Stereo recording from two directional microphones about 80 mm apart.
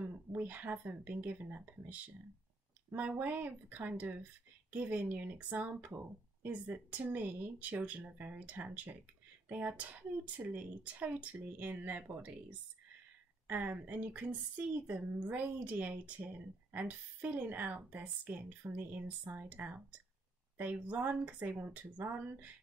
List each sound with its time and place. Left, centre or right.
0.3 s speech: right